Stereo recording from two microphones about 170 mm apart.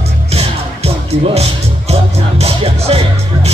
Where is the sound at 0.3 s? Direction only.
35° right (ahead or behind).